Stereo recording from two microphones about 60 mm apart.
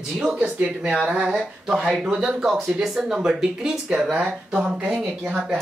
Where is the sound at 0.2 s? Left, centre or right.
Centre.